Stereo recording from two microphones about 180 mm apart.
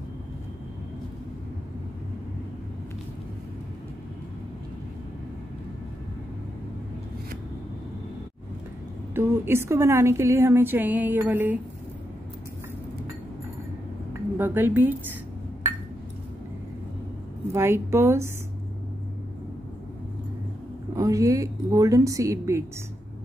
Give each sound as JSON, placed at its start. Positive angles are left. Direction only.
{"t": 9.1, "sound": "a woman's voice", "side_deg": -10}
{"t": 14.3, "sound": "speech", "side_deg": -10}
{"t": 17.5, "sound": "a woman's voice", "side_deg": -15}
{"t": 20.9, "sound": "a woman's voice", "side_deg": -20}